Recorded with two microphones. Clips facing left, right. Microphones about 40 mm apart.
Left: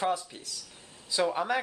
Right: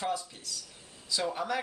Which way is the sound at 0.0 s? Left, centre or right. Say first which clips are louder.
Left 4 dB; left.